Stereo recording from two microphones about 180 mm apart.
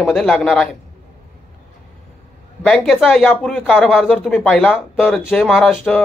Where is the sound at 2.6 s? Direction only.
Centre (ahead or behind).